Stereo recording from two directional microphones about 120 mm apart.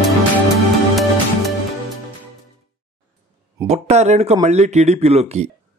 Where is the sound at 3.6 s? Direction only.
70° right (ahead or behind).